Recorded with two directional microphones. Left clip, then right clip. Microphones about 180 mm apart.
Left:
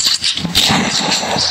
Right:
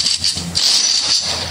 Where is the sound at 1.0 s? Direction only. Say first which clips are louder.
Left 1 dB; 35° right (ahead or behind).